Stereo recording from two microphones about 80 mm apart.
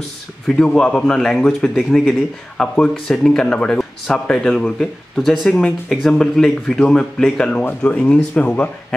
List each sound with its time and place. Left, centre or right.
0.7 s speech: centre
2.5 s speech: centre
7.6 s speech: centre